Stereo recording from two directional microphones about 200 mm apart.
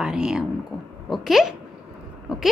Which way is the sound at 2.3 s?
Centre (ahead or behind).